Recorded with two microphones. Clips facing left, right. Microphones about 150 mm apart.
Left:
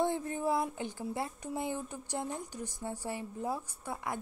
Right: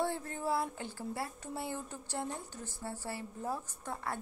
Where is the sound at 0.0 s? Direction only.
15° left (ahead or behind).